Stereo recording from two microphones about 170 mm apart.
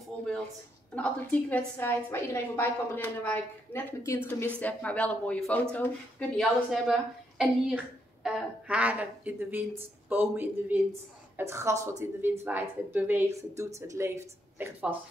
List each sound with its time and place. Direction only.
0.9 s a woman's voice: 5° left (ahead or behind); by 15.0 s 10° right (ahead or behind)